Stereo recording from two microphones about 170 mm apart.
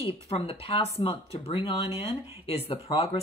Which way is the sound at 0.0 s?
35° left (ahead or behind).